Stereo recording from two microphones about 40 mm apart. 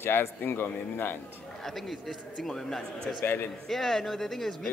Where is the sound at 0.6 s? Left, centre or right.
Left.